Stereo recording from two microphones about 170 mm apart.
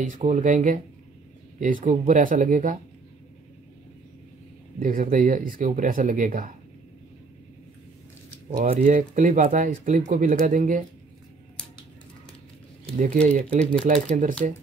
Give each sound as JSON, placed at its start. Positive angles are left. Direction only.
{"t": 0.0, "sound": "speech", "side_deg": -45}
{"t": 4.7, "sound": "speech", "side_deg": -55}
{"t": 8.5, "sound": "speech", "side_deg": -50}
{"t": 12.9, "sound": "speech", "side_deg": -45}